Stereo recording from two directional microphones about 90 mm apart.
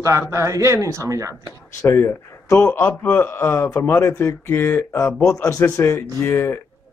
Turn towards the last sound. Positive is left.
turn(degrees=30)  # may be behind; listen again after turning